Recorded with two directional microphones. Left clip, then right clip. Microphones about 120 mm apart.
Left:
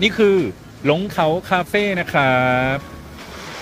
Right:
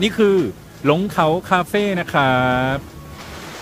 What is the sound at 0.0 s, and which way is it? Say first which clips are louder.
Speech: left 1 dB; 30° right (ahead or behind).